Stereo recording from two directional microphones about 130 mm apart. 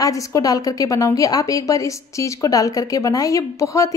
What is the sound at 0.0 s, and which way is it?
Speech, 25° left (ahead or behind).